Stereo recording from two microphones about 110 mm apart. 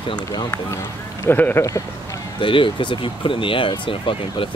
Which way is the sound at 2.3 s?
50° left (ahead or behind).